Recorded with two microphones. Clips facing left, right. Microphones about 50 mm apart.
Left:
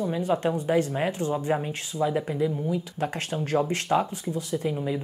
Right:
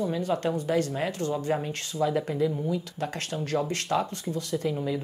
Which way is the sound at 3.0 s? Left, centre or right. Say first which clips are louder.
Left 3 dB; left.